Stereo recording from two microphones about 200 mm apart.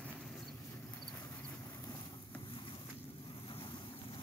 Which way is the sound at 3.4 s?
25° left (ahead or behind).